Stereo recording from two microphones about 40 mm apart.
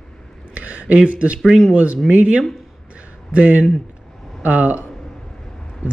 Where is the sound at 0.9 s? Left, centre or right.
Right.